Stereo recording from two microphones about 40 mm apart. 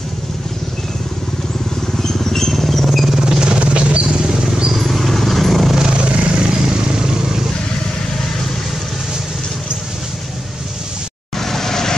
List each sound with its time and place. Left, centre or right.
2.0 s vehicle: centre
3.4 s a sound: right
4.7 s vehicle: centre
5.8 s vehicle: right
11.3 s vehicle: centre